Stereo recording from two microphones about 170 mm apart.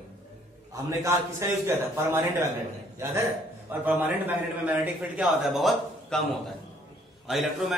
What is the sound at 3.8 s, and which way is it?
A man's voice, 10° right (ahead or behind).